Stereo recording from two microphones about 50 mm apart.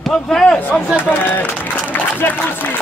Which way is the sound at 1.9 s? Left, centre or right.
Left.